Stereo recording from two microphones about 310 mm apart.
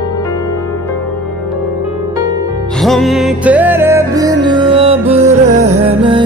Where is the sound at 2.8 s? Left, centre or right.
Centre.